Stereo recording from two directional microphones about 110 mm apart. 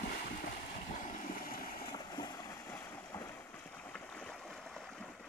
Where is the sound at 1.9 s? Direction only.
40° left (ahead or behind).